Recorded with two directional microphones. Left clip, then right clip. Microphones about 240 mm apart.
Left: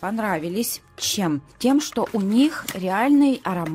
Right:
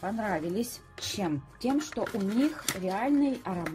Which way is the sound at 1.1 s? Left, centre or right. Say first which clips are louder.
Left 6 dB; left.